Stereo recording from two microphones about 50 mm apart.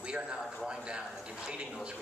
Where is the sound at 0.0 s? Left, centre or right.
Centre.